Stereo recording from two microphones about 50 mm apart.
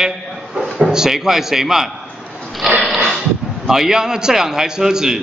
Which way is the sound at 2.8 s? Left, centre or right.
Centre.